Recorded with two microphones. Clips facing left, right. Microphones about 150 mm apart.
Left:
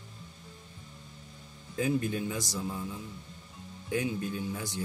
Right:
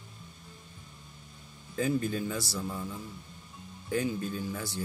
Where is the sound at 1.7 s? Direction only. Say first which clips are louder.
Even; 15° left (ahead or behind).